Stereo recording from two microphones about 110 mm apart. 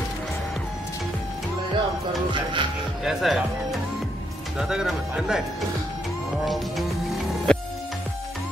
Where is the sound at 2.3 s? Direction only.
50° right (ahead or behind).